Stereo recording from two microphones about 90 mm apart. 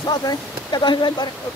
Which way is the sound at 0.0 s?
45° left (ahead or behind).